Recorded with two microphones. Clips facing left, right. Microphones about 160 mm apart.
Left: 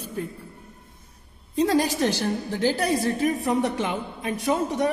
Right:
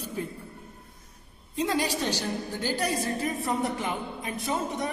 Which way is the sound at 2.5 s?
80° left.